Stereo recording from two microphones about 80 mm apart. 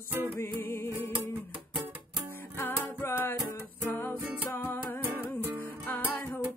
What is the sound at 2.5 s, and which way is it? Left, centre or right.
Music, left.